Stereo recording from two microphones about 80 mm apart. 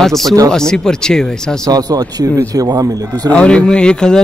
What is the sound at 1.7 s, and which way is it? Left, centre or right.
Speech, right.